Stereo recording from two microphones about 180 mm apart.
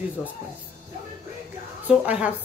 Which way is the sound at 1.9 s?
5° right (ahead or behind).